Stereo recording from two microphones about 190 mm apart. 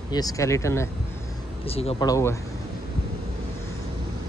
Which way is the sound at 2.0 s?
15° left (ahead or behind).